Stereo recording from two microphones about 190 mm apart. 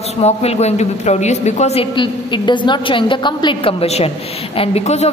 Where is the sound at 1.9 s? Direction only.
25° left (ahead or behind).